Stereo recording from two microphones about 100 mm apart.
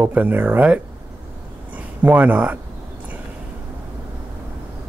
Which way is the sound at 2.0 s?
15° right (ahead or behind).